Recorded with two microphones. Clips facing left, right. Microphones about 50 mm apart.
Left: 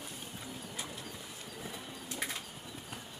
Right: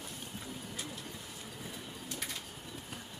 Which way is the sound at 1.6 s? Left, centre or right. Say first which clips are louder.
Left 1 dB; centre.